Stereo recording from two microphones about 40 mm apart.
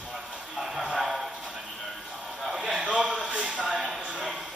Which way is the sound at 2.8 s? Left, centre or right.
Centre.